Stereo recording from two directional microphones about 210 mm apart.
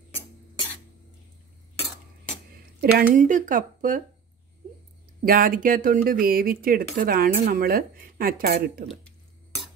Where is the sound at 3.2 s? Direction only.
40° right (ahead or behind).